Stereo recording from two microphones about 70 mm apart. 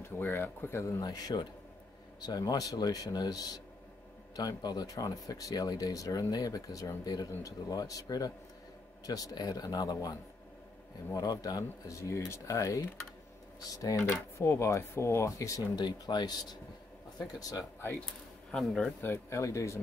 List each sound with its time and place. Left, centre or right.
0.0 s speech: left
1.0 s speech: left
11.1 s speech: left
14.0 s speech: left
17.4 s speech: left
18.5 s a man's voice: centre
18.9 s speech: left
19.3 s speech: left